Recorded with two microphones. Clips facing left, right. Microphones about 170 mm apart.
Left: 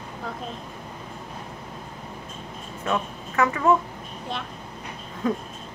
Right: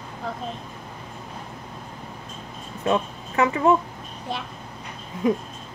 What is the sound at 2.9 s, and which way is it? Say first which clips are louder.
Speech: right 4 dB; 20° right (ahead or behind).